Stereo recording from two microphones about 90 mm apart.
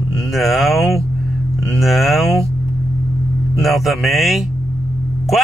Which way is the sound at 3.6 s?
Centre (ahead or behind).